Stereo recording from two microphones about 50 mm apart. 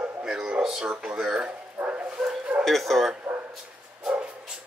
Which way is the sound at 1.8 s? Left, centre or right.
Right.